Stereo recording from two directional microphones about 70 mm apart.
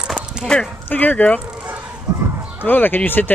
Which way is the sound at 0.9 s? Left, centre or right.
Left.